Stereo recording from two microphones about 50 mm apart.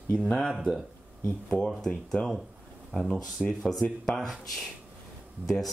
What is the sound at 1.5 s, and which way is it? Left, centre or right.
Speech, centre.